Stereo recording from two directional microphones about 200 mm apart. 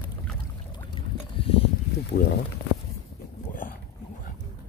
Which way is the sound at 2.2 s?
50° left (ahead or behind).